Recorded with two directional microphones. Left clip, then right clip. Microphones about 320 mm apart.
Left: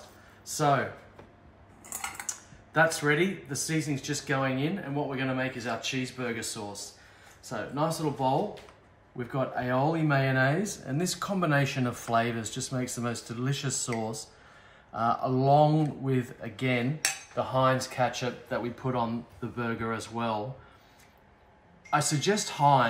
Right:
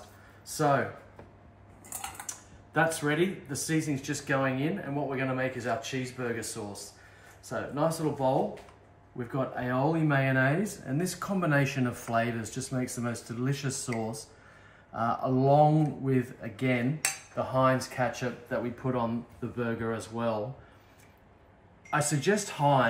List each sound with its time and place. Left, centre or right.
2.7 s speech: centre
7.4 s speech: centre
21.9 s speech: centre